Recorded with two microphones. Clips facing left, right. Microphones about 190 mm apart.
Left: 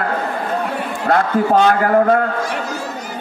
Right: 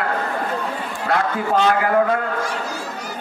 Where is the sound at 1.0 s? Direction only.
50° left (ahead or behind).